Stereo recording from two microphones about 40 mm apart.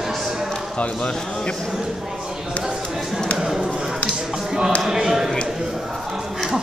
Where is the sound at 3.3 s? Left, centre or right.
Centre.